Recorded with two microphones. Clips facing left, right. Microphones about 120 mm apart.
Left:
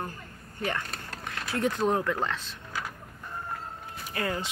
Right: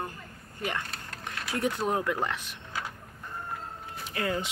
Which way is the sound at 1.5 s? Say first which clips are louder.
Left 2 dB; 15° right (ahead or behind).